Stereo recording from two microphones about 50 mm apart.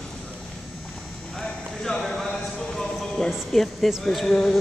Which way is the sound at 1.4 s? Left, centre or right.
Centre.